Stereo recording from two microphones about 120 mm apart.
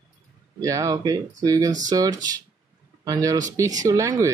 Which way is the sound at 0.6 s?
30° right (ahead or behind).